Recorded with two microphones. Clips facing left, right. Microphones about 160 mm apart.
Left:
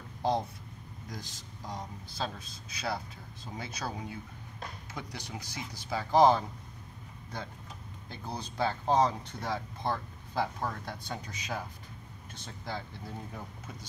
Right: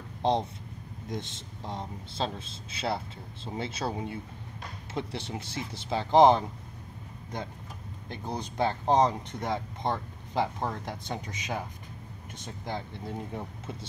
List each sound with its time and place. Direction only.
0.2 s speech: 20° right (ahead or behind)
8.1 s speech: 20° right (ahead or behind)